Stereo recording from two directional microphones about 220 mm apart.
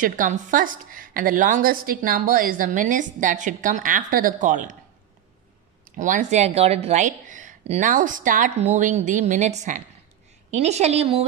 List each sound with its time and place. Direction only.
0.0 s a woman's voice: 35° right (ahead or behind)
5.9 s a woman's voice: 35° right (ahead or behind)